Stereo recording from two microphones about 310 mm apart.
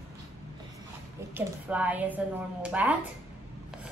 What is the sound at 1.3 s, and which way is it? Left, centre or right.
A woman's voice, centre.